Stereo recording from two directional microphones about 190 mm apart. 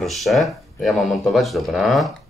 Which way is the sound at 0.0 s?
Centre (ahead or behind).